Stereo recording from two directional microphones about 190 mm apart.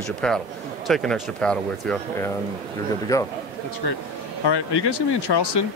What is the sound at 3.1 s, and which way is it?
Speech, 15° left (ahead or behind).